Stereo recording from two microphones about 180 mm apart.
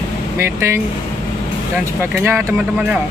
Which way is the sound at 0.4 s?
15° right (ahead or behind).